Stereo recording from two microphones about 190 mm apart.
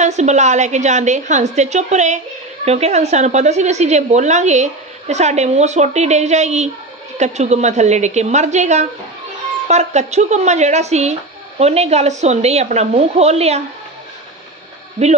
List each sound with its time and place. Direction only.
0.0 s a woman's voice: 35° right (ahead or behind)
15.0 s a woman's voice: 35° right (ahead or behind)